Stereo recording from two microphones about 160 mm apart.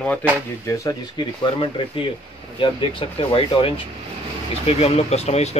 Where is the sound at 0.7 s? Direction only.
25° left (ahead or behind).